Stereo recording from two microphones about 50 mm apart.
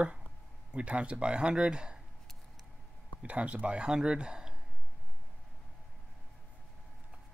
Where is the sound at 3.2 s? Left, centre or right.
Right.